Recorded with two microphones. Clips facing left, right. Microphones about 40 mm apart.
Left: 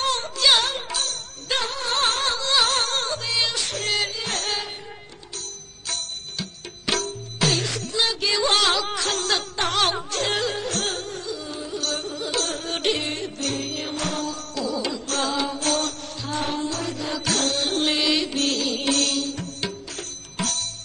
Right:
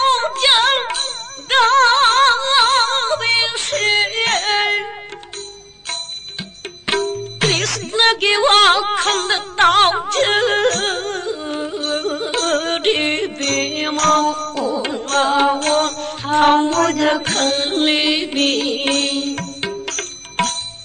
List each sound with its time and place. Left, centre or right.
0.0 s music: right
1.6 s music: right
2.0 s music: right
3.6 s yodeling: right
4.2 s music: right
6.9 s music: right
10.5 s music: right
11.7 s music: right
12.0 s music: right
17.2 s music: right
19.9 s music: right